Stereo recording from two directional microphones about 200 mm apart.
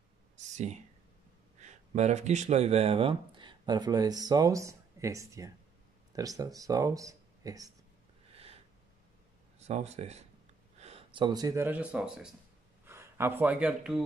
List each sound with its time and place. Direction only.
0.4 s speech: 35° right (ahead or behind); by 7.7 s 15° right (ahead or behind)
9.6 s speech: 35° right (ahead or behind); by 14.0 s 5° right (ahead or behind)